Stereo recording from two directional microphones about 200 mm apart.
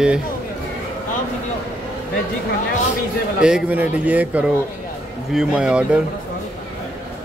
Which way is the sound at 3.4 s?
5° right (ahead or behind).